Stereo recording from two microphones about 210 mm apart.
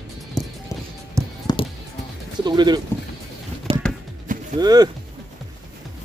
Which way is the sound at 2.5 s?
20° right (ahead or behind).